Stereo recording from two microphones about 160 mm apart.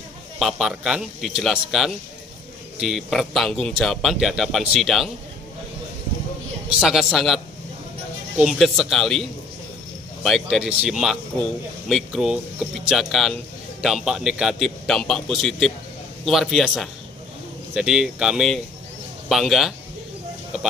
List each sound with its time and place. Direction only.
0.4 s speech: 5° right (ahead or behind)
6.8 s speech: centre (ahead or behind)
10.2 s speech: centre (ahead or behind)